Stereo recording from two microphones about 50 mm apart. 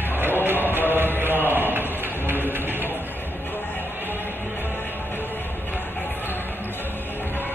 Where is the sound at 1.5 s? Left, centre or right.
Right.